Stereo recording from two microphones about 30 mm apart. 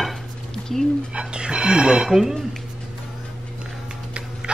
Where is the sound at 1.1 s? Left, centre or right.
Right.